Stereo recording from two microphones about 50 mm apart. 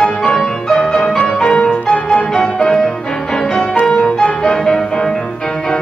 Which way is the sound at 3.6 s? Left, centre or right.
Left.